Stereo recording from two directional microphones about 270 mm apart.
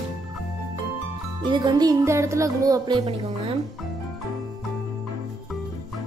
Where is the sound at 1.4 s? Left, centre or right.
Centre.